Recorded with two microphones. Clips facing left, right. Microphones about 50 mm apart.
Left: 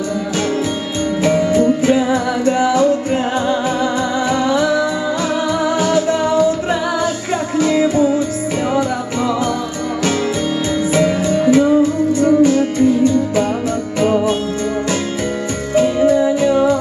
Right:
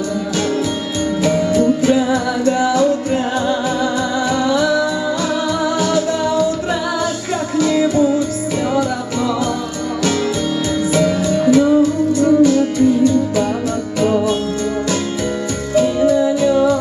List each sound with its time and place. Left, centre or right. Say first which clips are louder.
1.2 s music: left 1 dB; left
10.9 s music: left 1 dB; left
15.7 s music: left 1 dB; left